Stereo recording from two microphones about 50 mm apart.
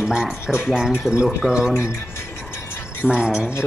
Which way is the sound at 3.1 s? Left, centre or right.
Centre.